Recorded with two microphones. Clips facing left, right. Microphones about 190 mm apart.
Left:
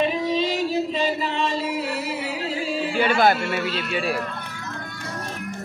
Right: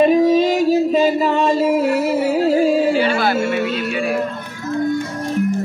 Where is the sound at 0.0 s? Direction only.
45° right (ahead or behind).